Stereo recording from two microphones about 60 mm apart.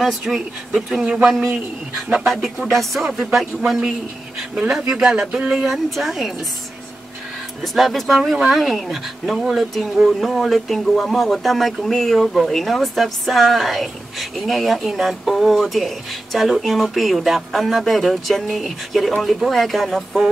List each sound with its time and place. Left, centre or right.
0.0 s speech: centre
3.1 s speech: centre
3.3 s speech: centre
5.7 s speech: centre
7.6 s speech: centre